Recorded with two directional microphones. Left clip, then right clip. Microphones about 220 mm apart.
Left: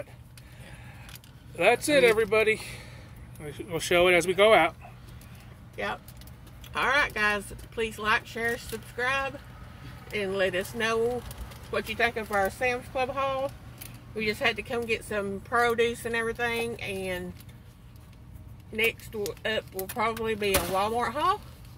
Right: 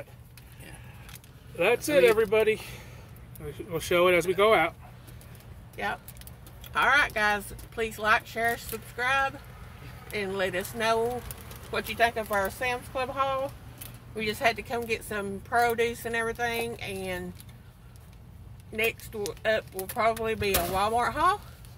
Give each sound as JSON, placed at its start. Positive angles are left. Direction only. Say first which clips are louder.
{"t": 1.6, "sound": "speech", "louder": "left 1 dB", "side_deg": 25}
{"t": 6.7, "sound": "speech", "louder": "right 2 dB", "side_deg": 0}
{"t": 18.8, "sound": "speech", "louder": "left 1 dB", "side_deg": -5}